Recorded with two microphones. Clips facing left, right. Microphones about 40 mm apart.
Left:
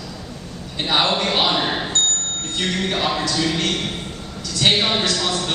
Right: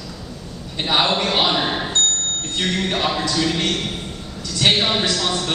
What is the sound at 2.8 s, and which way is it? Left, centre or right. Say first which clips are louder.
A man's voice: even; centre.